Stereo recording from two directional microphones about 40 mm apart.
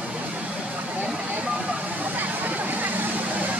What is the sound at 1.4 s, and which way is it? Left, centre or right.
Vehicle, centre.